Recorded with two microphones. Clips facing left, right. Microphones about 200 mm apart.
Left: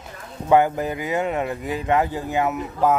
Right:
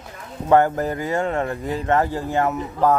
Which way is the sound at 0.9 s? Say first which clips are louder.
Right 1 dB; 15° left (ahead or behind).